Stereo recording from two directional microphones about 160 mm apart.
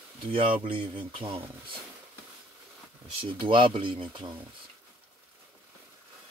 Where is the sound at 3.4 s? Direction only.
30° right (ahead or behind).